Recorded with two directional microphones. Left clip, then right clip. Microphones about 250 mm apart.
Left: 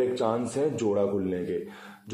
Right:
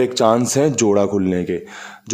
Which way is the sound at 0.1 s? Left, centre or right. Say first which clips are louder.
Right 12 dB; right.